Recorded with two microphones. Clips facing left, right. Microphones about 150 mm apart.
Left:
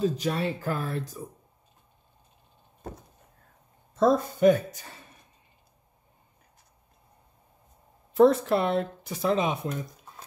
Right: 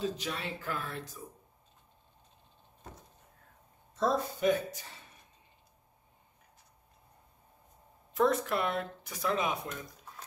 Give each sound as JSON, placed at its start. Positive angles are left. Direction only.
{"t": 0.0, "sound": "speech", "side_deg": 40}
{"t": 3.9, "sound": "speech", "side_deg": 50}
{"t": 8.1, "sound": "speech", "side_deg": 30}